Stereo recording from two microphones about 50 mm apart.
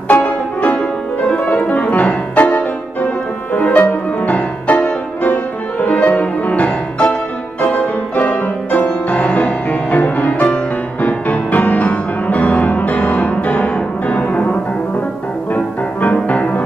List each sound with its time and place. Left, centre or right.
0.2 s music: left
3.5 s music: left
15.5 s music: left